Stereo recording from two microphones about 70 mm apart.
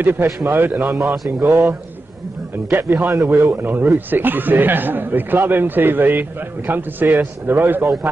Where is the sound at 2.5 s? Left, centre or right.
Right.